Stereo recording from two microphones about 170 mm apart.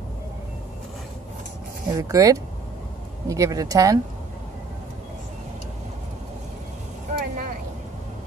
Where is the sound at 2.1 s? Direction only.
20° right (ahead or behind).